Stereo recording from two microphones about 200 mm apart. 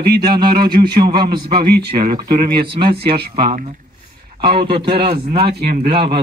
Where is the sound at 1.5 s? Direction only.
50° right (ahead or behind).